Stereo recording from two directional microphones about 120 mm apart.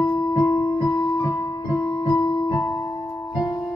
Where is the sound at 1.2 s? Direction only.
25° left (ahead or behind).